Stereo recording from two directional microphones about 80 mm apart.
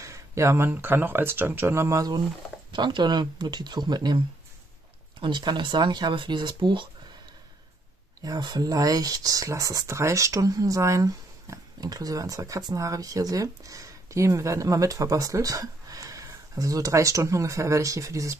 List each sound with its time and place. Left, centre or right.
0.0 s speech: right
2.7 s speech: right
5.2 s speech: right
8.2 s speech: right